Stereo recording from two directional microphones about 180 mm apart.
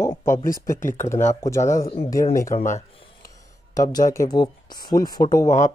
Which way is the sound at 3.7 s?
20° left (ahead or behind).